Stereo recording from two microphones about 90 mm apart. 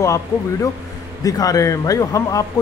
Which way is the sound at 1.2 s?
40° left (ahead or behind).